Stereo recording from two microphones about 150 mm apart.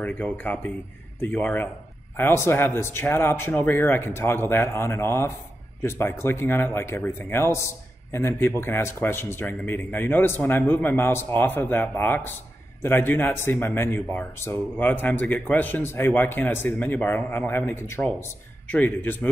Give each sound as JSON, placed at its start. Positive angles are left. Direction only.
{"t": 0.0, "sound": "a man's voice", "side_deg": 10}